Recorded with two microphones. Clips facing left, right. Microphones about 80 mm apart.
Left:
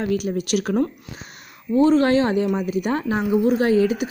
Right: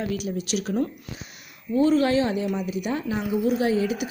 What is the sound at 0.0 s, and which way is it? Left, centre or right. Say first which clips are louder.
Speech: left 5 dB; left.